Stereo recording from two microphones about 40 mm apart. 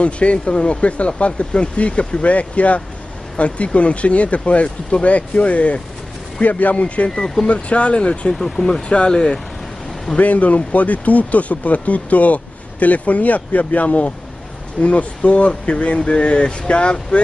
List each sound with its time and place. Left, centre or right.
0.0 s speech: left
7.2 s speech: centre
7.4 s speech: left
8.3 s speech: centre
8.8 s speech: left
10.1 s speech: left